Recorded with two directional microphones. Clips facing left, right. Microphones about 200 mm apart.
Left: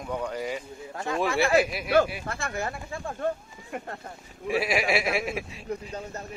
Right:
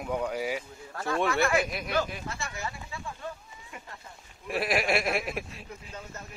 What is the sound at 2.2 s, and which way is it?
Speech, 55° left (ahead or behind).